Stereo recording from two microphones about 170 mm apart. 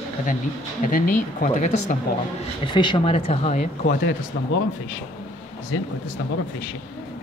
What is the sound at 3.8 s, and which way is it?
Speech, 80° left.